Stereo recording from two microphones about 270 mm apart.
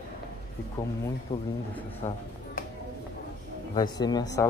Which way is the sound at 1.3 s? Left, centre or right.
Centre.